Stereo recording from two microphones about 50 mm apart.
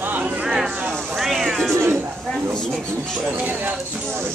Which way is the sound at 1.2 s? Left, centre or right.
Centre.